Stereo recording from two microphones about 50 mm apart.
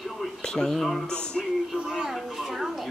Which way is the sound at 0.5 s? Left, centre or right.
Centre.